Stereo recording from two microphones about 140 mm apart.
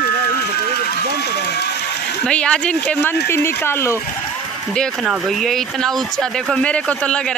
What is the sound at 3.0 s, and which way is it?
Speech, 15° left (ahead or behind).